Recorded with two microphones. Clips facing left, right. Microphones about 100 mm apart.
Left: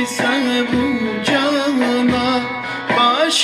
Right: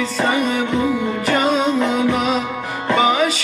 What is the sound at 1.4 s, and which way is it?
Music, 70° left (ahead or behind).